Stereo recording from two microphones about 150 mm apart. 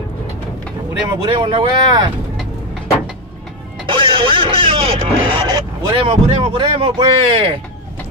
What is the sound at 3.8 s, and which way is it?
Speech, 35° right (ahead or behind).